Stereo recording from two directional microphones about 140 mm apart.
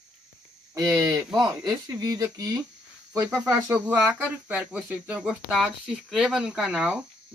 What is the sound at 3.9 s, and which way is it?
Speech, 10° right (ahead or behind).